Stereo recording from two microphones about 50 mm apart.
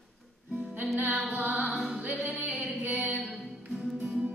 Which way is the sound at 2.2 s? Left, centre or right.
Right.